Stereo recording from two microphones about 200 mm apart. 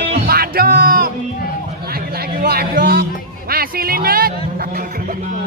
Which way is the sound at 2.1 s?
50° right (ahead or behind).